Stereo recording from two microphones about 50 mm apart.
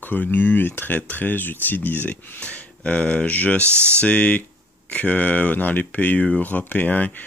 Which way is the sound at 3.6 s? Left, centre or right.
Right.